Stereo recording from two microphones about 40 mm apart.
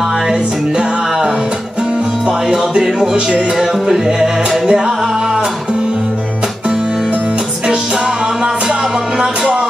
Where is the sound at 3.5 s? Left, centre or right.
Centre.